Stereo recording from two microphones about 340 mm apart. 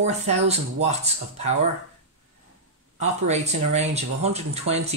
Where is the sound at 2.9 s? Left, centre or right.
Centre.